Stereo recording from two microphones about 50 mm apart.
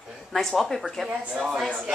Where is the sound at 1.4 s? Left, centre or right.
Centre.